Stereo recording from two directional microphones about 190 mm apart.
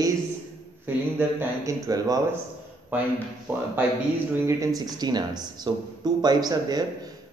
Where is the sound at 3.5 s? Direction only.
10° right (ahead or behind).